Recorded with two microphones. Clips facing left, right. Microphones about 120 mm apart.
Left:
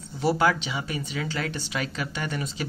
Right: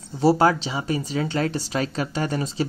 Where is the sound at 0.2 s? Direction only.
35° right (ahead or behind).